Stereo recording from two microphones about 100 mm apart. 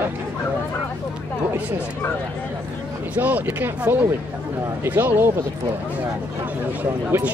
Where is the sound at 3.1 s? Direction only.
15° right (ahead or behind).